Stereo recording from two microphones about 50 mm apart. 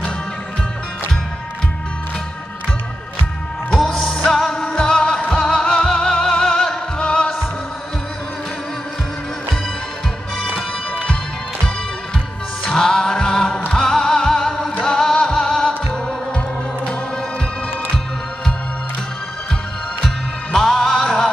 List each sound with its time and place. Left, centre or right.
4.0 s music: centre
4.3 s music: centre
12.6 s music: centre
20.5 s music: centre